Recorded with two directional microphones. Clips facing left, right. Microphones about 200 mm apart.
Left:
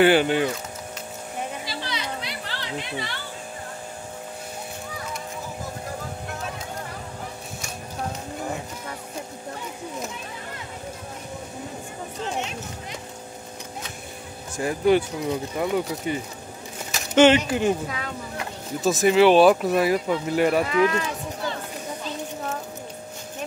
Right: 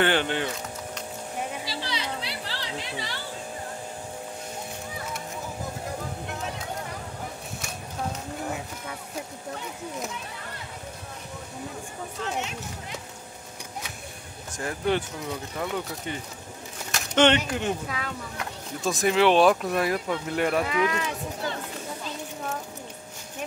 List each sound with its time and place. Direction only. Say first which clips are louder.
0.0 s speech: left 6 dB; 10° left (ahead or behind)
1.9 s children playing: left 1 dB; 30° right (ahead or behind)
14.6 s speech: left 7 dB; 10° left (ahead or behind); by 21.1 s 5° right (ahead or behind)